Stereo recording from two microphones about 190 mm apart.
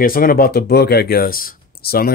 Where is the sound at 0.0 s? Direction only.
50° left (ahead or behind).